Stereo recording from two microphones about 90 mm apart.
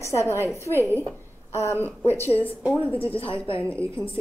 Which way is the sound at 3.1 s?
90° left.